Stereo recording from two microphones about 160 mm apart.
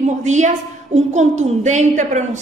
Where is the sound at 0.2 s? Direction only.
50° right (ahead or behind).